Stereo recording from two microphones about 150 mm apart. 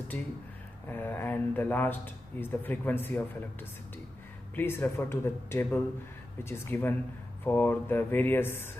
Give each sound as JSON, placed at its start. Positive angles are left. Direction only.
{"t": 0.8, "sound": "speech", "side_deg": 10}
{"t": 4.6, "sound": "speech", "side_deg": 15}